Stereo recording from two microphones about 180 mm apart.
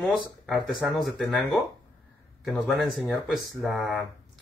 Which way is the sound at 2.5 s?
Centre (ahead or behind).